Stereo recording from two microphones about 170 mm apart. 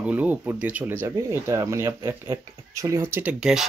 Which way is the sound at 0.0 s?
10° right (ahead or behind).